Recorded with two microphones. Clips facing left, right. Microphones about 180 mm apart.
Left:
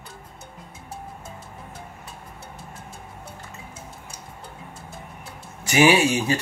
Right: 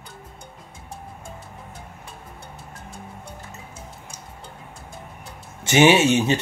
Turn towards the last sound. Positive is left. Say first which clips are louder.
# right 3 dB
turn(degrees=-25)  # may be behind; listen again after turning